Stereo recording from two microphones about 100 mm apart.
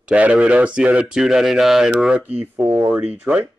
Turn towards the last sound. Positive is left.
turn(degrees=-10)  # may be behind; listen again after turning